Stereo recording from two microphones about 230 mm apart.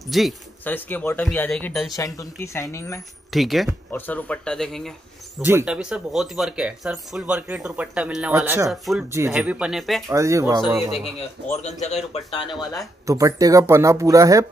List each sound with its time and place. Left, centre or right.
0.1 s speech: centre
3.3 s speech: centre
10.0 s speech: centre
11.5 s a man's voice: left
13.0 s speech: centre